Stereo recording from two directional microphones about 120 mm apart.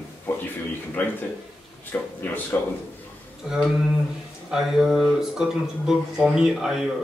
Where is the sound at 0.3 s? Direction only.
20° left (ahead or behind).